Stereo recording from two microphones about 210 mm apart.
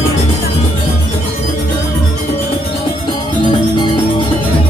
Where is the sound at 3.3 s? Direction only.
25° left (ahead or behind).